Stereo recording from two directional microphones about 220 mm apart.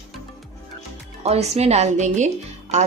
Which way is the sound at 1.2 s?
30° right (ahead or behind).